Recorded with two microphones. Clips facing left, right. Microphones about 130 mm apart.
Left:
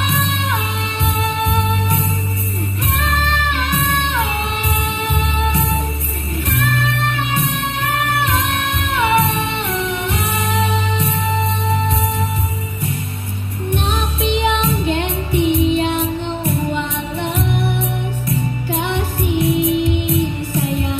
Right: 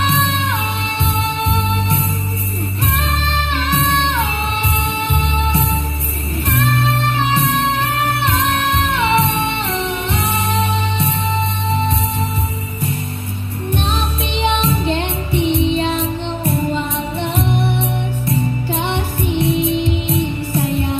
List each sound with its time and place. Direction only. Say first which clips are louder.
0.0 s music: right 3 dB; 30° right (ahead or behind)
14.5 s music: even; 30° right (ahead or behind)